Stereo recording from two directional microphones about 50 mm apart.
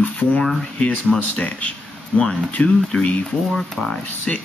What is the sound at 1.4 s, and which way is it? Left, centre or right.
Speech, left.